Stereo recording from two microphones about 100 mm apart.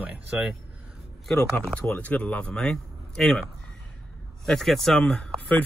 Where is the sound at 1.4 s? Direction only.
15° left (ahead or behind).